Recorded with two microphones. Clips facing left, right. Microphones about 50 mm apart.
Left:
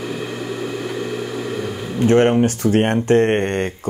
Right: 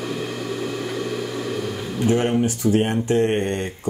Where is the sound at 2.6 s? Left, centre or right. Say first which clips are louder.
Left 3 dB; left.